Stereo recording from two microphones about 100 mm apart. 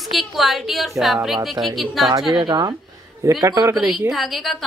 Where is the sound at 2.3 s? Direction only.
45° right (ahead or behind).